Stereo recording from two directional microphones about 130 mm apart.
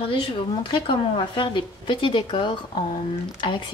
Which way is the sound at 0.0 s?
40° left (ahead or behind).